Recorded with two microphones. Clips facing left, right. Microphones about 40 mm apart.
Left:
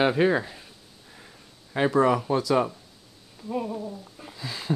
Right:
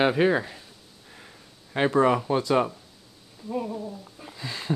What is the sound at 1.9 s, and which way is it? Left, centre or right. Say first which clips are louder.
Speech: even; centre.